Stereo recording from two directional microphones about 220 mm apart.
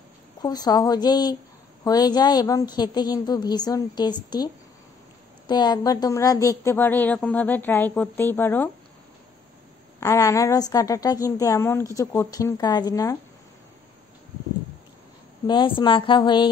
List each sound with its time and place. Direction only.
0.4 s a woman's voice: 15° left (ahead or behind)
5.5 s a woman's voice: 20° left (ahead or behind)
9.9 s a woman's voice: 15° left (ahead or behind)
15.4 s a woman's voice: 20° left (ahead or behind)